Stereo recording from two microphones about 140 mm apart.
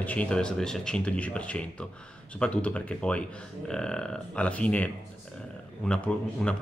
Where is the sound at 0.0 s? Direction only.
10° left (ahead or behind).